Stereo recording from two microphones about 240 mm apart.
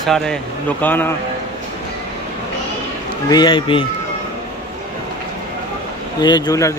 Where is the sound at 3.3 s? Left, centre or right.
Centre.